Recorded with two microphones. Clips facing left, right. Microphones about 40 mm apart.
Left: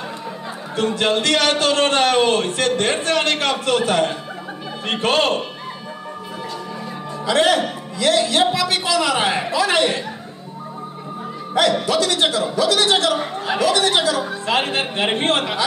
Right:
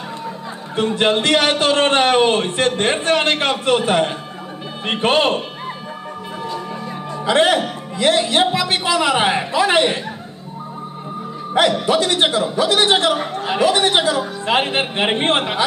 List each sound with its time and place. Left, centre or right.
0.7 s a man's voice: right
7.2 s a man's voice: right
11.5 s a man's voice: right